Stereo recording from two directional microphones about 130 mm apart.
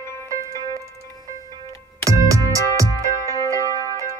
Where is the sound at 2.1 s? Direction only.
25° right (ahead or behind).